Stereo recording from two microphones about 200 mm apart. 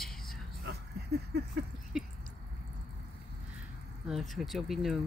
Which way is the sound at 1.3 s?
55° right (ahead or behind).